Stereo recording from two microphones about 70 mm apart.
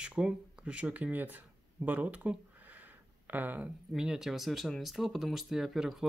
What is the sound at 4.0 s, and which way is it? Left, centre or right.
Speech, centre.